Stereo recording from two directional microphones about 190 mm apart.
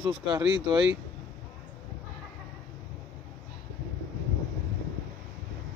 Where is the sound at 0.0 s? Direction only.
15° right (ahead or behind).